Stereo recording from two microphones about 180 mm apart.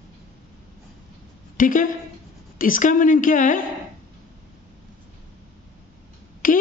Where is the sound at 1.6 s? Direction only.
50° left (ahead or behind).